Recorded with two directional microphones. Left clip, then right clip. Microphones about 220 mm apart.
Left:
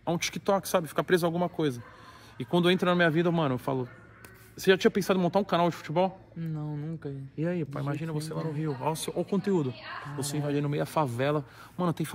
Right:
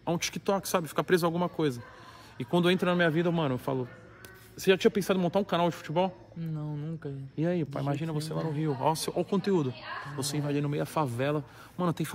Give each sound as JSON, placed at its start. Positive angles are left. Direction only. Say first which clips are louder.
{"t": 0.0, "sound": "a man's voice", "louder": "left 1 dB", "side_deg": -5}
{"t": 7.3, "sound": "a man's voice", "louder": "right 2 dB", "side_deg": -50}
{"t": 9.1, "sound": "a man's voice", "louder": "even", "side_deg": -15}